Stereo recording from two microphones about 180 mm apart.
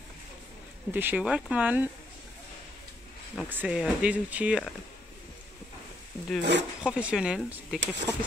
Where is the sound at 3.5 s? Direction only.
5° right (ahead or behind).